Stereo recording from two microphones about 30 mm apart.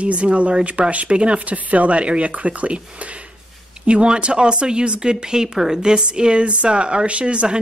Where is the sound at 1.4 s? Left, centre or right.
Right.